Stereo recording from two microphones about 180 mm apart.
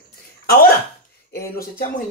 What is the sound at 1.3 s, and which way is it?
Speech, 55° left (ahead or behind).